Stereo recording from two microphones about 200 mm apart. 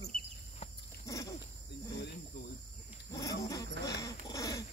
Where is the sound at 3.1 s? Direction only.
15° left (ahead or behind).